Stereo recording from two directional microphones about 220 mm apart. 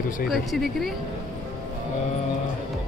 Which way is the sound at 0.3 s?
Centre (ahead or behind).